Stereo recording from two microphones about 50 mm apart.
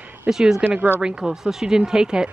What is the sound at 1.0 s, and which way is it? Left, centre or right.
Speech, centre.